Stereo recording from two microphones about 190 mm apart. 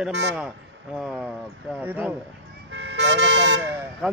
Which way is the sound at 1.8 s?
10° right (ahead or behind).